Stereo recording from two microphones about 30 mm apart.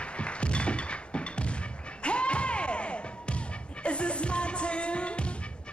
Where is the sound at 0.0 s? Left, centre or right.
Left.